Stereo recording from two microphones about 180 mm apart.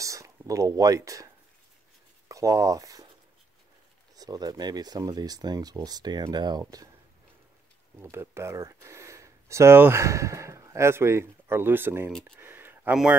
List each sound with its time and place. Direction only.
0.0 s speech: 20° right (ahead or behind)
4.1 s speech: 20° right (ahead or behind)
8.0 s speech: 15° right (ahead or behind)